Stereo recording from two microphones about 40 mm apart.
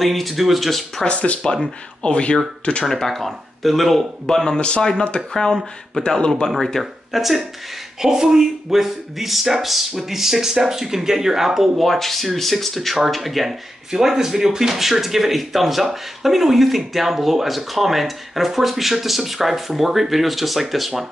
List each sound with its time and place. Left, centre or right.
0.0 s speech: centre
1.0 s speech: left
1.4 s speech: centre
2.8 s speech: centre
4.5 s speech: left
5.3 s speech: centre
6.5 s speech: centre
13.9 s speech: centre